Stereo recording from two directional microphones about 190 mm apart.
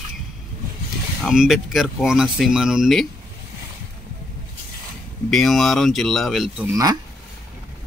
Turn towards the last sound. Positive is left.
turn(degrees=-20)  # may be behind; listen again after turning